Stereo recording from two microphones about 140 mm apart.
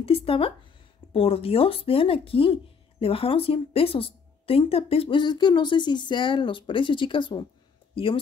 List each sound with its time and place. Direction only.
0.0 s speech: 40° left (ahead or behind)